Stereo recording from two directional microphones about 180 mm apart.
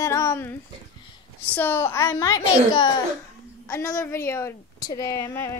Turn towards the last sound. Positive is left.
turn(degrees=15)  # may be behind; listen again after turning